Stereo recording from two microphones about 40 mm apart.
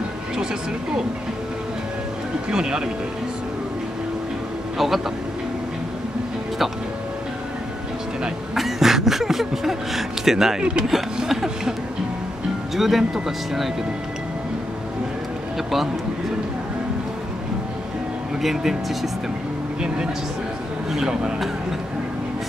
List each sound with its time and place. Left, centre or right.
2.5 s speech: centre
4.7 s speech: centre
8.5 s speech: centre
10.6 s speech: right
11.2 s speech: centre
12.7 s speech: centre
15.5 s a sound: centre
18.4 s speech: centre
20.9 s speech: centre